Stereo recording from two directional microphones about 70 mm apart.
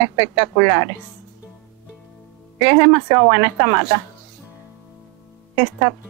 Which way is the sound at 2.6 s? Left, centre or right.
Right.